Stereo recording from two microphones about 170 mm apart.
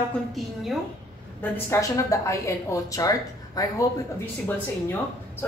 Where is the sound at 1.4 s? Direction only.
15° left (ahead or behind).